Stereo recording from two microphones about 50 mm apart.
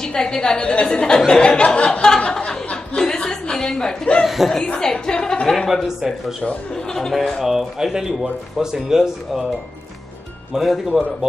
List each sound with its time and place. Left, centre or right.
0.0 s a woman's voice: centre
3.0 s chuckle: centre
4.2 s speech: centre
4.7 s a woman's voice: centre
6.4 s speech: left
6.9 s speech: centre
10.5 s speech: centre
10.9 s speech: centre